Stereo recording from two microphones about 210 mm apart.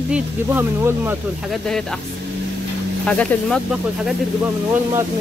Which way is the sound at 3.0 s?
5° left (ahead or behind).